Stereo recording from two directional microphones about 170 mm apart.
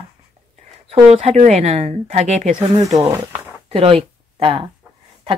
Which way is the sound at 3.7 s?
35° right (ahead or behind).